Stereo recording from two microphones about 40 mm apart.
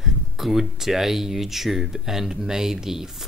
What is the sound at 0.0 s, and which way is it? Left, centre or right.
Speech, centre.